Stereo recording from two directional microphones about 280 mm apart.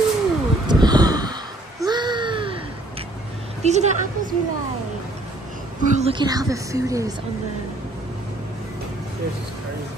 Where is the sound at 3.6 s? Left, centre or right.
Right.